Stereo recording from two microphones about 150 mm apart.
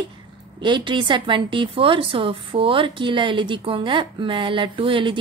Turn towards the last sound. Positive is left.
turn(degrees=-35)  # may be behind; listen again after turning